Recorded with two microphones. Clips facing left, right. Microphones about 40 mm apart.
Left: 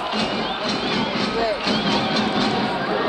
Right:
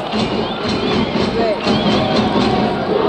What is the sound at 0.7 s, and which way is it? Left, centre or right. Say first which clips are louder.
Music: right 7 dB; centre.